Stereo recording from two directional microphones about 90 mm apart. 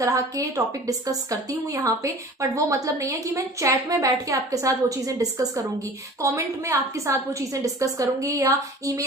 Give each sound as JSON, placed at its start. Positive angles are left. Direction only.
{"t": 0.0, "sound": "a woman's voice", "side_deg": -35}